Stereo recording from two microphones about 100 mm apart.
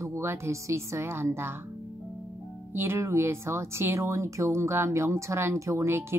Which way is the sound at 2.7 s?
25° right (ahead or behind).